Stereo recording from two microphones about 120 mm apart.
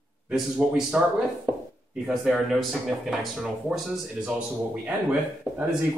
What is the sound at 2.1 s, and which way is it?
Speech, centre (ahead or behind).